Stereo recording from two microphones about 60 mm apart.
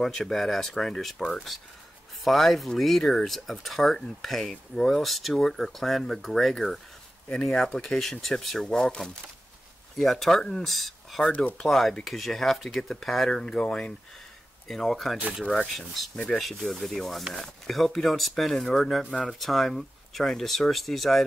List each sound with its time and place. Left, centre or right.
0.0 s speech: centre
11.2 s speech: left
11.6 s speech: centre